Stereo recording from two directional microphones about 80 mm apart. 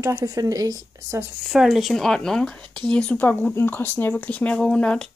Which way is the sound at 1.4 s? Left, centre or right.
Centre.